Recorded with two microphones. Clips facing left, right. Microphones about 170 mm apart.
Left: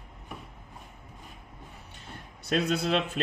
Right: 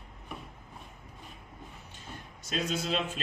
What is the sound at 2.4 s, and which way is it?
Speech, 60° left (ahead or behind).